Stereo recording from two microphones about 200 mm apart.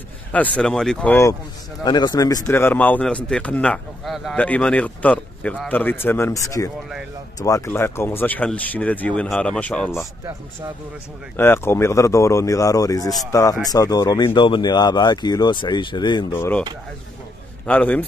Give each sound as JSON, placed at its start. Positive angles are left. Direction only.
{"t": 0.3, "sound": "speech", "side_deg": 5}
{"t": 1.9, "sound": "a man's voice", "side_deg": 20}
{"t": 11.3, "sound": "a man's voice", "side_deg": 10}
{"t": 17.6, "sound": "a man's voice", "side_deg": 5}